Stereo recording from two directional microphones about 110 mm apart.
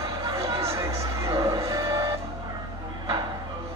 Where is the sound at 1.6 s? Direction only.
30° right (ahead or behind).